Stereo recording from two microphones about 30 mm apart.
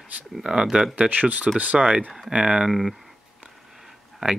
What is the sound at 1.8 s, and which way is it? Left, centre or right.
Speech, right.